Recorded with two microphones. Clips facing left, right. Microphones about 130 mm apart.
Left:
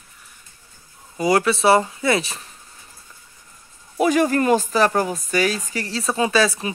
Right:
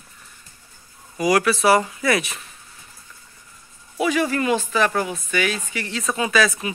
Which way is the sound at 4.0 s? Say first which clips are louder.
Left 3 dB; 45° left (ahead or behind).